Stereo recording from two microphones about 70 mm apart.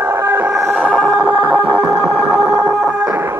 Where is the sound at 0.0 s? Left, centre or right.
Right.